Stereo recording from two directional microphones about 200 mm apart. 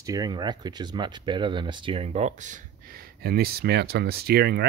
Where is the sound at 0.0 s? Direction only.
20° right (ahead or behind).